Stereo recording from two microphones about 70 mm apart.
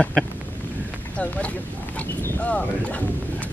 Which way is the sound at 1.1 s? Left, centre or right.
Centre.